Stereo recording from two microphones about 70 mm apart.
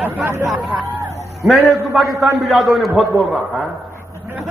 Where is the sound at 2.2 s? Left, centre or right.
Centre.